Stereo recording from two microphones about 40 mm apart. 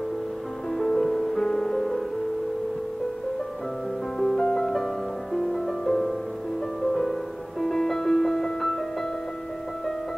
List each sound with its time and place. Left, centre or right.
0.7 s music: centre
4.2 s music: centre